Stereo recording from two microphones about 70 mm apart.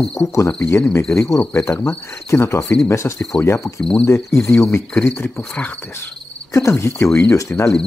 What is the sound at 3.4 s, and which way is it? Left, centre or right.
Speech, left.